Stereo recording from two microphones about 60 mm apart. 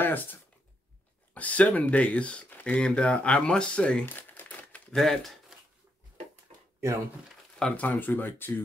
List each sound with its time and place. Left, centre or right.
0.0 s speech: left; by 4.0 s centre
4.0 s crumpling: left
4.9 s speech: centre
7.5 s speech: centre
7.8 s speech: left